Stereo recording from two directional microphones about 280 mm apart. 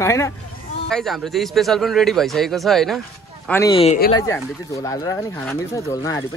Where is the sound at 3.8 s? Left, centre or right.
Left.